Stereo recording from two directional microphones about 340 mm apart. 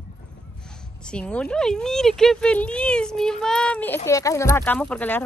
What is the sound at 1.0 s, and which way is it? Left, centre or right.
Speech, centre.